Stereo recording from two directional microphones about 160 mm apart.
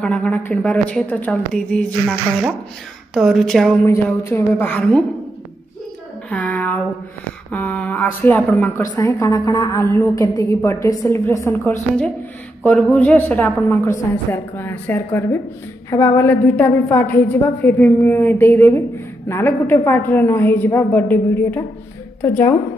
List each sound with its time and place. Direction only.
0.0 s a woman's voice: 5° left (ahead or behind)
3.2 s a woman's voice: centre (ahead or behind)
3.8 s a woman's voice: 15° left (ahead or behind)
6.3 s a woman's voice: 10° left (ahead or behind)
8.8 s a woman's voice: 20° left (ahead or behind)
12.6 s a woman's voice: centre (ahead or behind)